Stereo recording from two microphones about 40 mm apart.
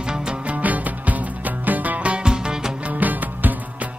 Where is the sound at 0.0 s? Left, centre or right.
Right.